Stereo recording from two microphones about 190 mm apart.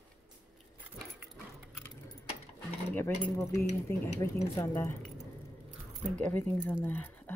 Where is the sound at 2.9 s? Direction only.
10° left (ahead or behind).